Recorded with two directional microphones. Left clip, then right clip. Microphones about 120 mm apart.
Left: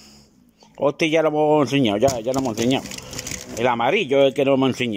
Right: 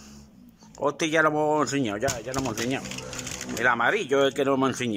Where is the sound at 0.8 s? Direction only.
10° left (ahead or behind).